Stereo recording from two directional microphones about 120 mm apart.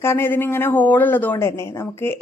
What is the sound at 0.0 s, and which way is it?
Speech, 20° left (ahead or behind).